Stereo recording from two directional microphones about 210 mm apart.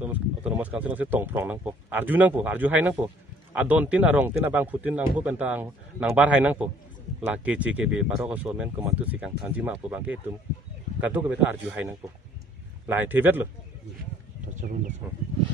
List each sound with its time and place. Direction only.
0.0 s speech: 5° right (ahead or behind)
14.6 s speech: 35° right (ahead or behind)